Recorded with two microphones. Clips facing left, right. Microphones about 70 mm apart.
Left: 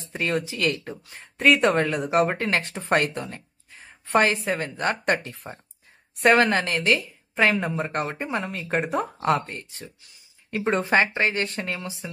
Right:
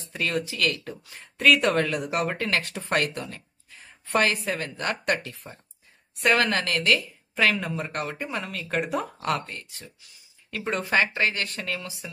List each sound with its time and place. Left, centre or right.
0.1 s speech: left
6.2 s speech: left